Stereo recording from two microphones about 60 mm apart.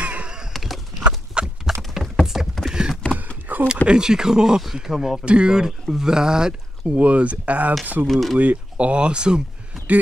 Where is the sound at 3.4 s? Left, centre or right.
Right.